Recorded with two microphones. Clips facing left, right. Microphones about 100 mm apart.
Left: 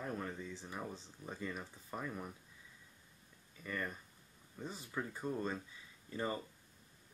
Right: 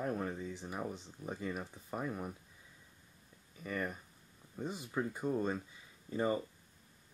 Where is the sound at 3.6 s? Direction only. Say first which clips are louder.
Right 3 dB; 15° right (ahead or behind).